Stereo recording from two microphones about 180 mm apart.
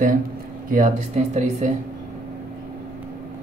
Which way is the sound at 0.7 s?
45° right (ahead or behind).